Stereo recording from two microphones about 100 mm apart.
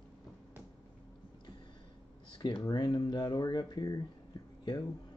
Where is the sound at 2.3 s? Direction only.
55° left (ahead or behind).